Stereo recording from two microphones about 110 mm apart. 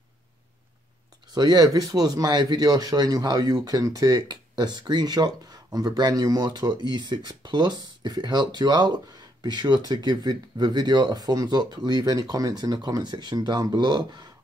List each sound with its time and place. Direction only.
1.3 s speech: 35° right (ahead or behind)